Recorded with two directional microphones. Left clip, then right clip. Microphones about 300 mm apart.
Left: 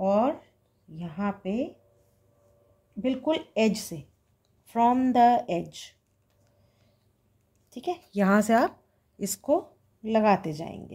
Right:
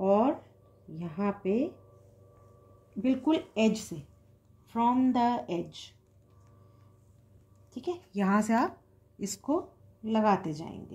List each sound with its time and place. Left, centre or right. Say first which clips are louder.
0.0 s a sound: left 2 dB; left
0.9 s speech: left 1 dB; left
3.1 s speech: left 1 dB; left
7.7 s speech: left 4 dB; left